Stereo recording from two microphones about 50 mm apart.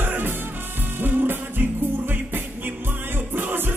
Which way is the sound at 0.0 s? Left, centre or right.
Right.